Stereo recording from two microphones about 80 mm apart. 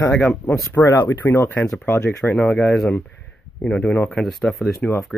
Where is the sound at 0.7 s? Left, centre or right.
Left.